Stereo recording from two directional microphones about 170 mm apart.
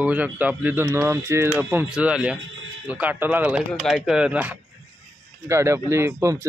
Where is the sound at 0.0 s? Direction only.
10° right (ahead or behind).